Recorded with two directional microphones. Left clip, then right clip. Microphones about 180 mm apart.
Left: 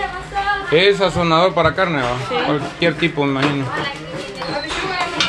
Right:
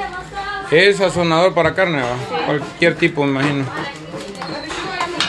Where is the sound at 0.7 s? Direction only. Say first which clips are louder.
Right 2 dB; 25° right (ahead or behind).